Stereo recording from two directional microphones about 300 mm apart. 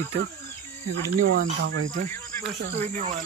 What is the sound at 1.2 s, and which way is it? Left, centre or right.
Speech, right.